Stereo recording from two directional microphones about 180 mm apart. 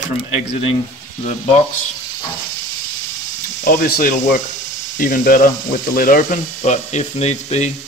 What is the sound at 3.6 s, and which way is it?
Speech, 55° left (ahead or behind).